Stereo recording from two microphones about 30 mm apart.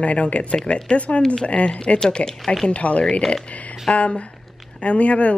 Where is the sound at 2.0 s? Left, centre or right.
Left.